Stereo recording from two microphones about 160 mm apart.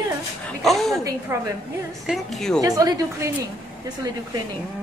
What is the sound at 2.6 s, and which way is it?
Speech, 20° right (ahead or behind).